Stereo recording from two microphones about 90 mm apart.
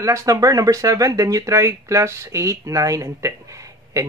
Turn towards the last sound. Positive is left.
turn(degrees=-35)  # may be behind; listen again after turning